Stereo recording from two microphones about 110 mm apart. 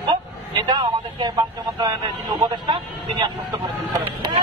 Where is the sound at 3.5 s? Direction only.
40° right (ahead or behind).